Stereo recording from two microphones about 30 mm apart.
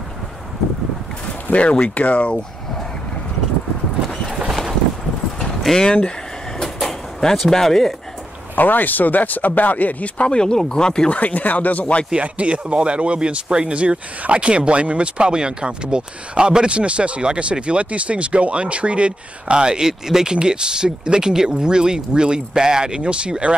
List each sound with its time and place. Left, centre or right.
1.5 s speech: left
2.0 s speech: left
4.1 s clip-clop: centre
5.8 s speech: left
6.6 s a sound: centre
7.4 s speech: centre
8.5 s speech: left
10.2 s speech: left
11.1 s speech: left
12.2 s speech: right
19.8 s speech: centre
20.3 s speech: right